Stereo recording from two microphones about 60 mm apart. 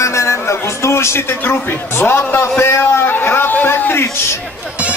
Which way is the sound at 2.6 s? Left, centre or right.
Left.